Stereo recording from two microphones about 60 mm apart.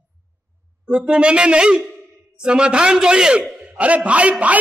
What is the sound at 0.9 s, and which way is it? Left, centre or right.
A man's voice, centre.